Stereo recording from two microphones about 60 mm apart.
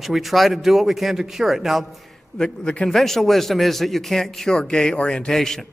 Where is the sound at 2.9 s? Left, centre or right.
Centre.